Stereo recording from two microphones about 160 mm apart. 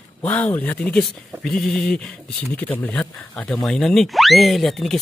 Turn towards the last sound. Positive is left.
turn(degrees=0)  # may be behind; listen again after turning